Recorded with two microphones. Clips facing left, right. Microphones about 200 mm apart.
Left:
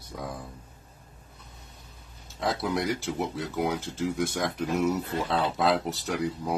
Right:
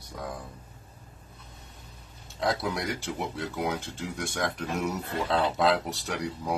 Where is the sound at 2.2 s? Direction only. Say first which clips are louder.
Even; centre (ahead or behind).